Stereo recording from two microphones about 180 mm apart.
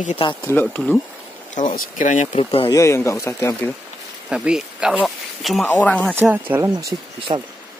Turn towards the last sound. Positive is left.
turn(degrees=-35)  # may be behind; listen again after turning